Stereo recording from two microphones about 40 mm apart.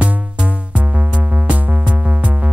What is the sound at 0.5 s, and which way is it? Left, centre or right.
Music, right.